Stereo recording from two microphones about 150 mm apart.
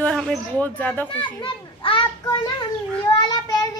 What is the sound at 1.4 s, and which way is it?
Speech, 35° left (ahead or behind).